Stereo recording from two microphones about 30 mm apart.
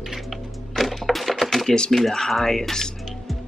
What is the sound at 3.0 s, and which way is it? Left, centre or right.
Music, centre.